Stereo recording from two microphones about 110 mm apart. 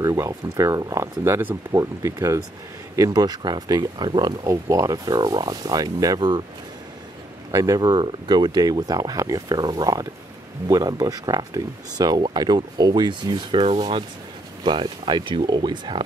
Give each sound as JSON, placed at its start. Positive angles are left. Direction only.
{"t": 0.0, "sound": "speech", "side_deg": -30}
{"t": 7.5, "sound": "speech", "side_deg": -35}